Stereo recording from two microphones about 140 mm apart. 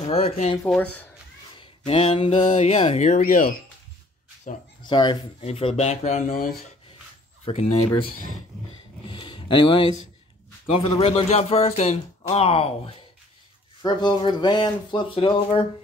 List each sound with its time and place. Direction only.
0.0 s speech: 45° left (ahead or behind)
0.7 s speech: 10° left (ahead or behind)
1.9 s speech: 40° left (ahead or behind)
2.4 s speech: 55° left (ahead or behind); by 3.5 s 85° left
4.5 s speech: 65° left (ahead or behind)
4.8 s speech: 35° left (ahead or behind)
5.4 s speech: 45° left (ahead or behind)
7.4 s speech: 45° left (ahead or behind)
11.0 s speech: 45° left (ahead or behind)
13.8 s speech: 30° left (ahead or behind)